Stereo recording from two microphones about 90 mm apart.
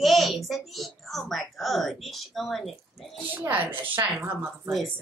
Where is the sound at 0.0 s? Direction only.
Centre (ahead or behind).